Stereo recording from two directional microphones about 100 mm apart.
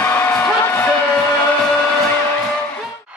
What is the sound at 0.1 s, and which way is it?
Music, 15° left (ahead or behind).